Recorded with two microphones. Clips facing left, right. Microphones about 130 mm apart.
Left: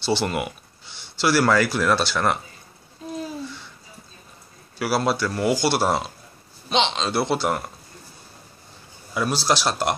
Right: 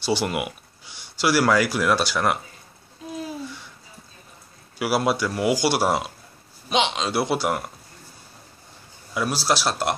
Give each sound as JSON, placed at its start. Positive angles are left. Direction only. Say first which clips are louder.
{"t": 0.0, "sound": "speech", "louder": "left 1 dB", "side_deg": -10}
{"t": 4.7, "sound": "speech", "louder": "even", "side_deg": -15}
{"t": 9.1, "sound": "speech", "louder": "left 1 dB", "side_deg": -5}